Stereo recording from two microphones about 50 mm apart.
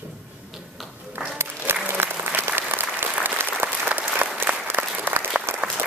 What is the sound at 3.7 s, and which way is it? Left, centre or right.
Applause, right.